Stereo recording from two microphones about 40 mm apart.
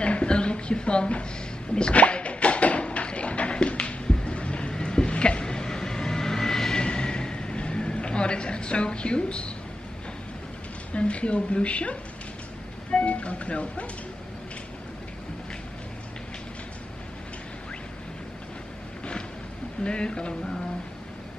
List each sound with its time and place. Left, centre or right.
0.0 s a sound: left
10.9 s speech: left
19.8 s speech: left